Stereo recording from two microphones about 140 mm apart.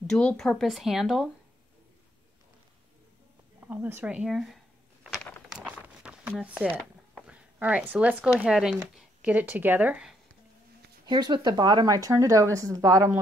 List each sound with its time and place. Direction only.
0.0 s speech: 5° left (ahead or behind)
3.6 s speech: 15° right (ahead or behind)
5.5 s a sound: 5° right (ahead or behind)
7.2 s speech: 10° right (ahead or behind)
11.1 s speech: 35° right (ahead or behind)